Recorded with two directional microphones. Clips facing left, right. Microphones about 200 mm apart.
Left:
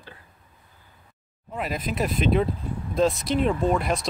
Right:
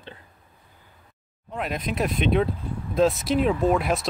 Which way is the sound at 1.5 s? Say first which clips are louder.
Even; centre (ahead or behind).